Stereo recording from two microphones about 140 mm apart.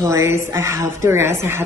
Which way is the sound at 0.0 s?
20° right (ahead or behind).